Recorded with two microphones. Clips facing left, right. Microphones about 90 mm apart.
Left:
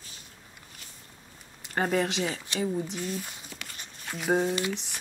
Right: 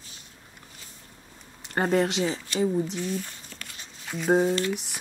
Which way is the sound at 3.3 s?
10° left (ahead or behind).